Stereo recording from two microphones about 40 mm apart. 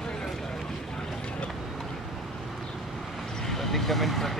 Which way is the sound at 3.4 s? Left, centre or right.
Centre.